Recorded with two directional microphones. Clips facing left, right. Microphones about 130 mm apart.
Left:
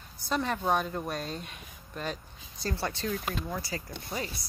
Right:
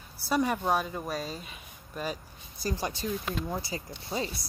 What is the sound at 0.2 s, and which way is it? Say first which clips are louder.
Speech: right 3 dB; 10° right (ahead or behind).